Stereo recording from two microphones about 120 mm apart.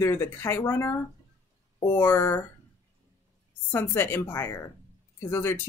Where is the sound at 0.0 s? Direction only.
20° left (ahead or behind).